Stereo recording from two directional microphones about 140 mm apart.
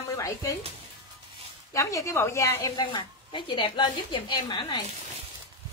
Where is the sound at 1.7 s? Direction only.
20° left (ahead or behind).